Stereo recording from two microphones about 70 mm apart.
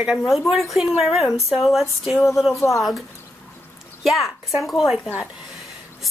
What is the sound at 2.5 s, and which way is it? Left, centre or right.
Speech, left.